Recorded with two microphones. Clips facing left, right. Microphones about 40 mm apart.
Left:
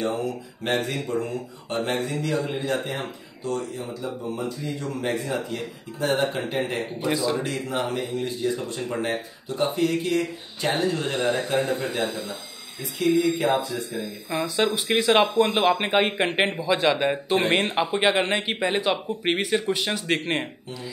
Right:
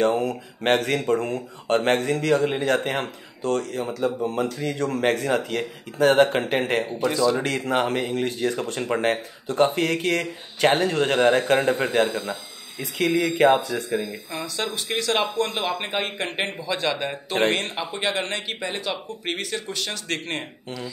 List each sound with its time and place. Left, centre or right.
0.0 s speech: right
13.1 s speech: right
14.3 s speech: centre